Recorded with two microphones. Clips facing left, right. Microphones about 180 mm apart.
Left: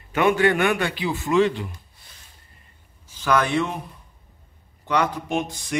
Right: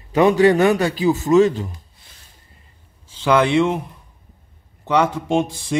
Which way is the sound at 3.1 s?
25° right (ahead or behind).